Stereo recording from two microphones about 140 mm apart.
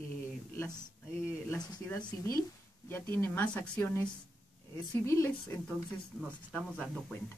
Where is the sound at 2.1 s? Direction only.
20° left (ahead or behind).